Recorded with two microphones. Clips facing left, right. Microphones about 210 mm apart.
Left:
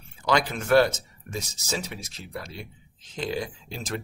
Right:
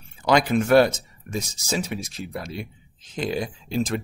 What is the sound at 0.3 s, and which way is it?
A man's voice, 15° right (ahead or behind).